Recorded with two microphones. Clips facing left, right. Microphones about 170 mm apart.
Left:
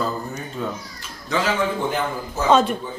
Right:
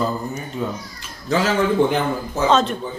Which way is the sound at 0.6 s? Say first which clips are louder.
Right 2 dB; 10° right (ahead or behind).